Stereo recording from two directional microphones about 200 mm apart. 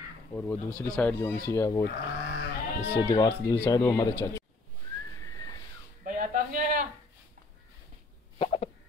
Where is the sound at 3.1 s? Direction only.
20° left (ahead or behind).